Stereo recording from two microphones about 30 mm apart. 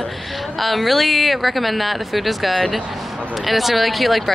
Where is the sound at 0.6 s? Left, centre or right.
Centre.